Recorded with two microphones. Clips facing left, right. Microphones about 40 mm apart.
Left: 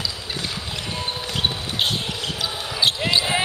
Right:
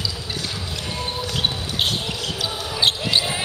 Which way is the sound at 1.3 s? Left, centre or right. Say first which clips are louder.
Left 1 dB; centre.